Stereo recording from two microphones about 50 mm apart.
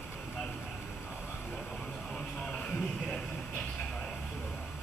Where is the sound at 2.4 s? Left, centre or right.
Left.